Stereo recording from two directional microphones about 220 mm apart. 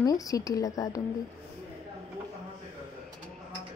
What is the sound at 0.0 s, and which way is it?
A woman's voice, 15° left (ahead or behind).